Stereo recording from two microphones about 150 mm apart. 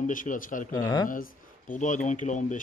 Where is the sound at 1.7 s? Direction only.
60° left (ahead or behind).